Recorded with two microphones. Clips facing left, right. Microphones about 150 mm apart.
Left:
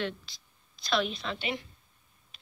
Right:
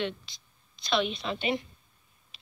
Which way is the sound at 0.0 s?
5° left (ahead or behind).